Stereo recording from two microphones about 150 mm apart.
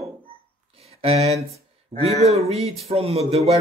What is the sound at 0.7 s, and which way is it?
Speech, 40° right (ahead or behind).